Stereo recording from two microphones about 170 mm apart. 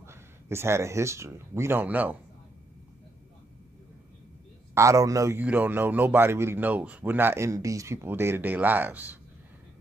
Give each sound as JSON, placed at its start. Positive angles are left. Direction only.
{"t": 0.0, "sound": "speech", "side_deg": -15}
{"t": 4.7, "sound": "a man's voice", "side_deg": -20}